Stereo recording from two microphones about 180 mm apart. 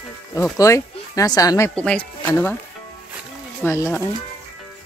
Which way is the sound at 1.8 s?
5° left (ahead or behind).